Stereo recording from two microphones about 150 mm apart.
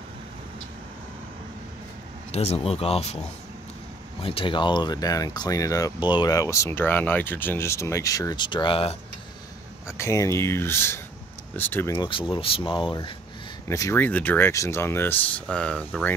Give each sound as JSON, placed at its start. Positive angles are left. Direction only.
{"t": 2.3, "sound": "speech", "side_deg": 45}
{"t": 4.2, "sound": "speech", "side_deg": 35}
{"t": 9.8, "sound": "speech", "side_deg": 20}
{"t": 12.0, "sound": "speech", "side_deg": 35}
{"t": 13.7, "sound": "speech", "side_deg": 20}